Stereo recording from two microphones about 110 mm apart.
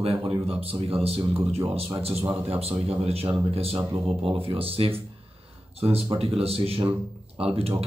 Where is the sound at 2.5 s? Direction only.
65° right (ahead or behind).